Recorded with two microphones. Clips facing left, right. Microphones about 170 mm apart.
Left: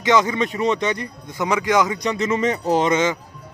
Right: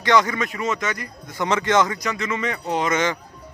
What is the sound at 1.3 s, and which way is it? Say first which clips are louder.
Speech: left 1 dB; 10° left (ahead or behind).